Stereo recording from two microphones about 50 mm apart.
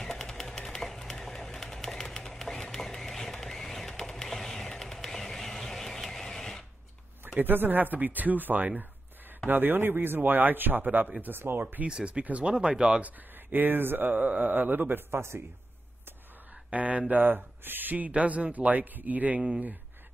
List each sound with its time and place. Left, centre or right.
0.0 s a sound: centre
5.6 s printer: centre
7.3 s speech: right
11.9 s speech: right
13.0 s speech: right
16.7 s speech: right